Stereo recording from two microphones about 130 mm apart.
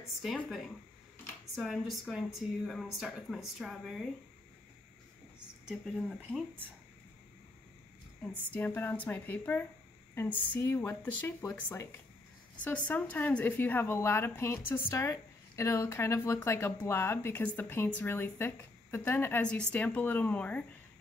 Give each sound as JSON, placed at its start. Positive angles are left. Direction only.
{"t": 1.5, "sound": "speech", "side_deg": 0}
{"t": 5.7, "sound": "speech", "side_deg": 0}
{"t": 8.5, "sound": "a woman's voice", "side_deg": 15}